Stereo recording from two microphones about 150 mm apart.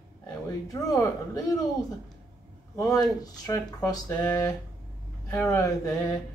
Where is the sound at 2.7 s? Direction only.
20° left (ahead or behind).